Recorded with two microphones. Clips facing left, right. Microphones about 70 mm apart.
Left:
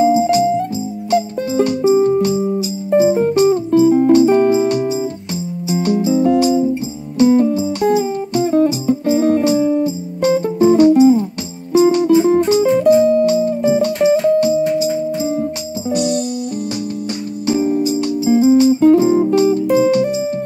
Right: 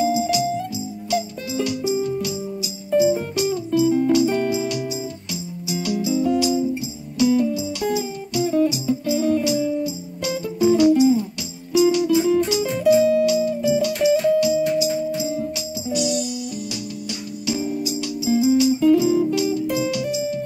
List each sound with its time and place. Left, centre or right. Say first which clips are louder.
0.0 s music: left 8 dB; left
11.7 s guitar: left 6 dB; left
15.9 s music: left 5 dB; left
17.5 s music: left 9 dB; left